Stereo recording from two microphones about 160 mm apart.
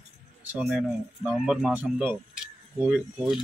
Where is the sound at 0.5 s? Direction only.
5° right (ahead or behind).